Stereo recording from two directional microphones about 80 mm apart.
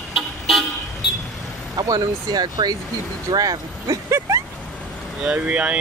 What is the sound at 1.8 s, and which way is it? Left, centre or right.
Speech, right.